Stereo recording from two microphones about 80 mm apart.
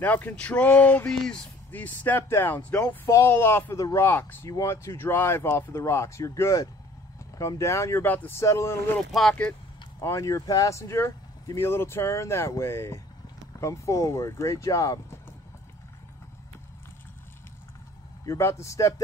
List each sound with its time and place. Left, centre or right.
0.0 s speech: left
3.7 s speech: left
4.0 s speech: left
4.5 s speech: left
8.0 s speech: left
8.4 s speech: left
9.3 s speech: centre
9.9 s speech: left
18.2 s speech: left